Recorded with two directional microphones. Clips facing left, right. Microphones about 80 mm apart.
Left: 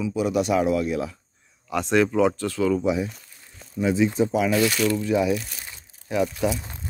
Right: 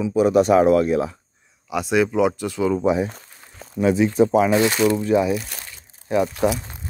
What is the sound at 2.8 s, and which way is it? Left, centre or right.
Speech, right.